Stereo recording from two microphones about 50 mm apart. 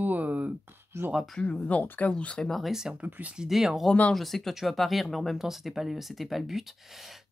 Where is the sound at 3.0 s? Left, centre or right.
Right.